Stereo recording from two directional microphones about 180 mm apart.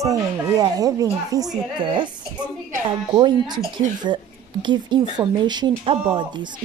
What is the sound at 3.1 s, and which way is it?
Speech, 25° right (ahead or behind).